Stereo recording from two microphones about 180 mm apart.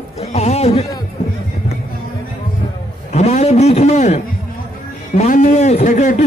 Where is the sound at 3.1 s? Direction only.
40° left (ahead or behind).